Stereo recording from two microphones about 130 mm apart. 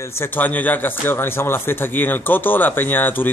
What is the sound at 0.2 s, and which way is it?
A man's voice, 15° left (ahead or behind).